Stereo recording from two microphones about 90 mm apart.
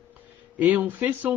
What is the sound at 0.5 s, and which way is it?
Speech, 20° right (ahead or behind).